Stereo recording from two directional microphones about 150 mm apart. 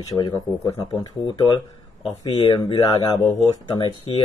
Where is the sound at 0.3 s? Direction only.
25° left (ahead or behind).